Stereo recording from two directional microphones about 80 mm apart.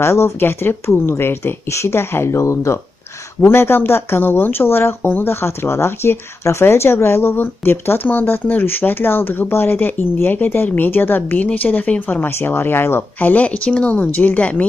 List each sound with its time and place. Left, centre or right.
0.0 s speech: left; by 14.7 s centre